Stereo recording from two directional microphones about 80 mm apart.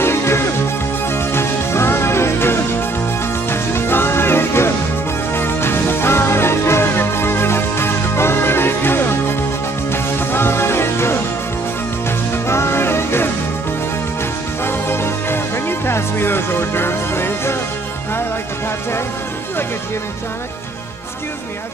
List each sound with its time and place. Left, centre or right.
0.0 s music: left
12.4 s music: left
14.6 s music: left